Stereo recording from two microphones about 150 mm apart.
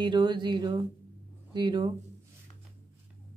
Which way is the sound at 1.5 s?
30° right (ahead or behind).